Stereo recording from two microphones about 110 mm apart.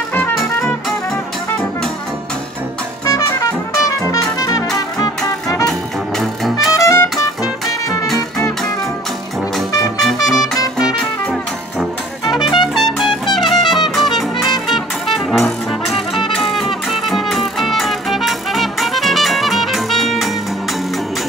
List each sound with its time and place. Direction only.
3.1 s brass instrument: 30° left (ahead or behind)
4.0 s music: 30° left (ahead or behind)
5.7 s music: centre (ahead or behind)
6.7 s music: 30° left (ahead or behind)
9.9 s music: centre (ahead or behind)
12.3 s music: 40° left (ahead or behind)
12.7 s trumpet: centre (ahead or behind)
13.9 s music: centre (ahead or behind)